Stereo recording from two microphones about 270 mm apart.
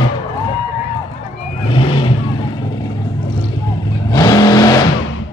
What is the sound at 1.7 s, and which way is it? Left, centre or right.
Vehicle, centre.